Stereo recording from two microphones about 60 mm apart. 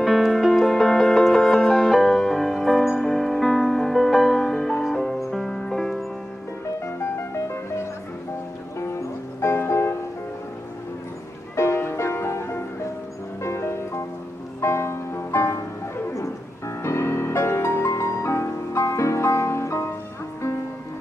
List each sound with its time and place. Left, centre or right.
0.0 s music: centre
7.0 s music: left
9.4 s music: left
11.5 s music: left